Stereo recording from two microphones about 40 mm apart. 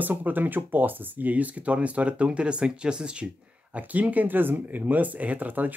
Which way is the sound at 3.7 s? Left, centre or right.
Right.